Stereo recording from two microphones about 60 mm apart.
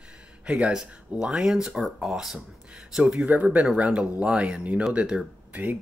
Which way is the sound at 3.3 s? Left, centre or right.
Right.